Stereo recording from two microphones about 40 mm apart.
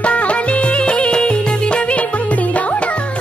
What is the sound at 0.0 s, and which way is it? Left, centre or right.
Music, left.